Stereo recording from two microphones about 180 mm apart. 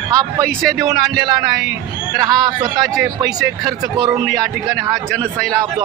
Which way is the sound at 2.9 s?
5° right (ahead or behind).